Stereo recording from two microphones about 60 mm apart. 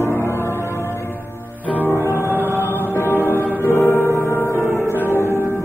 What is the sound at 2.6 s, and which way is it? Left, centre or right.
Music, left.